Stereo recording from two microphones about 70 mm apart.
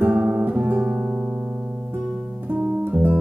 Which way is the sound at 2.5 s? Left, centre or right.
Centre.